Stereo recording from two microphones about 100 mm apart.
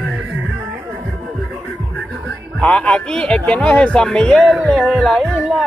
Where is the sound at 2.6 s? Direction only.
10° left (ahead or behind).